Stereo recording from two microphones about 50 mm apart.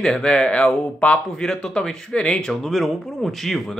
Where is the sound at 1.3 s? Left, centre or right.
Centre.